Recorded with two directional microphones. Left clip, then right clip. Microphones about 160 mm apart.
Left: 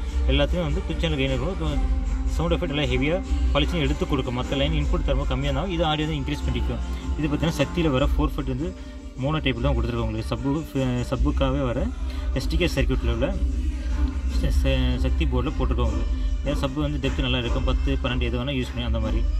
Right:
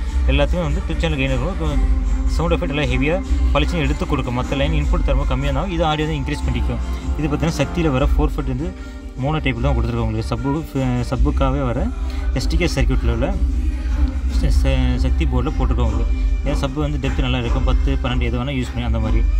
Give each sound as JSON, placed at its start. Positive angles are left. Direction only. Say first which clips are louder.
{"t": 0.3, "sound": "speech", "louder": "right 4 dB", "side_deg": -5}
{"t": 14.4, "sound": "speech", "louder": "right 3 dB", "side_deg": 0}